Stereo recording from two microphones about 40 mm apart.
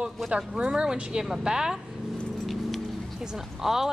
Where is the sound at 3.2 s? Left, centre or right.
Centre.